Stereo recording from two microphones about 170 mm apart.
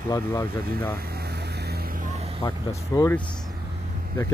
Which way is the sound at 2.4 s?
20° left (ahead or behind).